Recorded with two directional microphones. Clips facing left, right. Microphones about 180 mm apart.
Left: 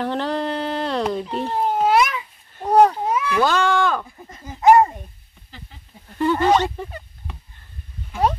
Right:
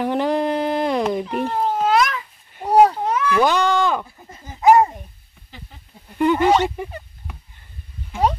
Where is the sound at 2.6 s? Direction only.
10° right (ahead or behind).